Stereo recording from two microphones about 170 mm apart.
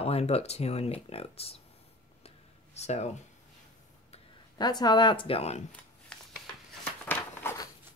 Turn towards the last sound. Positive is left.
turn(degrees=15)  # may be behind; listen again after turning